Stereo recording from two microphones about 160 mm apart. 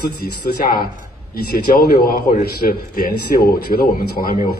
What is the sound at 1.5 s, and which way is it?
A man's voice, 75° left (ahead or behind).